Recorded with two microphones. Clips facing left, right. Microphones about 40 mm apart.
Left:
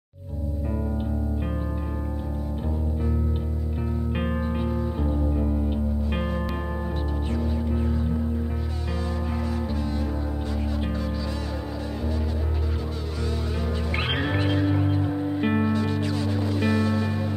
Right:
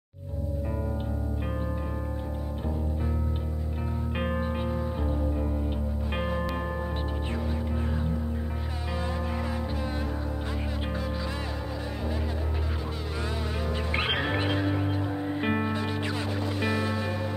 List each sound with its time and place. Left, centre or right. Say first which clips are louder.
4.1 s music: even; centre
13.9 s music: left 1 dB; centre
15.7 s music: left 4 dB; centre
16.3 s music: left 5 dB; centre